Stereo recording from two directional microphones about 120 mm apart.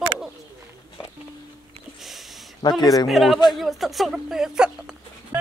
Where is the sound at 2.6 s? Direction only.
35° left (ahead or behind).